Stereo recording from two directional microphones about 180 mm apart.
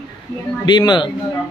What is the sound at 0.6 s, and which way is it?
Speech, 25° left (ahead or behind).